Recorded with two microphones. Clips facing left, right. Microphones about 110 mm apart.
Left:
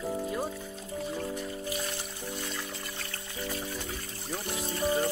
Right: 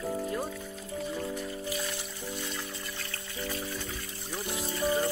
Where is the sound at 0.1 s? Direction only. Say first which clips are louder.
Left 1 dB; 5° left (ahead or behind).